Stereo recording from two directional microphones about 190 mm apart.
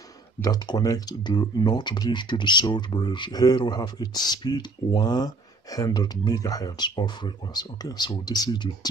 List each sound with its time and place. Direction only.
0.4 s speech: 20° left (ahead or behind)